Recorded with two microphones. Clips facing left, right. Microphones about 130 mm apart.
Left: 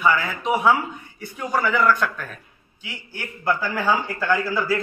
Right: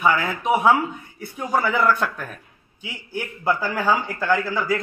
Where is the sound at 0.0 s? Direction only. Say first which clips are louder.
Even; 20° right (ahead or behind).